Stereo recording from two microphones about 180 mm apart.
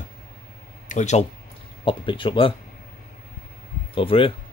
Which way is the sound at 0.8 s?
40° left (ahead or behind).